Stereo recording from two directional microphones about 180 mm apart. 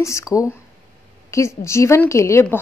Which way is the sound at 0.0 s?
15° left (ahead or behind).